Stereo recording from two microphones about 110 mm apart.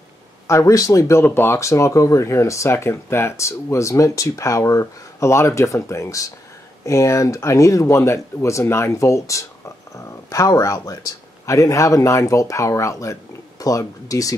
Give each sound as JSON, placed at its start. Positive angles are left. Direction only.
{"t": 0.5, "sound": "speech", "side_deg": 30}